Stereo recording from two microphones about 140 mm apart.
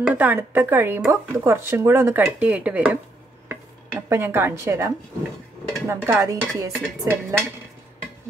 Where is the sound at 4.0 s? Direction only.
20° right (ahead or behind).